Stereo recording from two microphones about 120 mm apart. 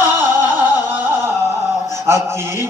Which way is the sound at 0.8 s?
15° right (ahead or behind).